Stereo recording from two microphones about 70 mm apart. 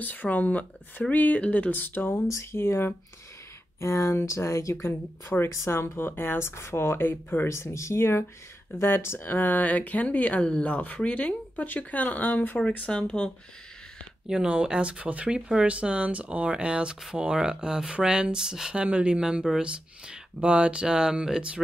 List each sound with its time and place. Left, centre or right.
0.0 s speech: left
2.2 s speech: left
7.4 s speech: left; by 13.3 s centre
14.3 s speech: centre